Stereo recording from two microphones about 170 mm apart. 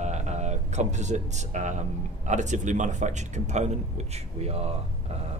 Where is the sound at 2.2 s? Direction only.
45° right (ahead or behind).